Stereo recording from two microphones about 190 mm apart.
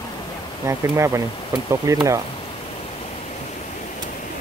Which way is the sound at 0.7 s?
15° right (ahead or behind).